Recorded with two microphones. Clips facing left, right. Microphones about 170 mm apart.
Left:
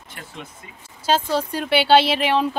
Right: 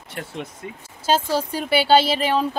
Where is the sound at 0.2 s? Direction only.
55° right (ahead or behind).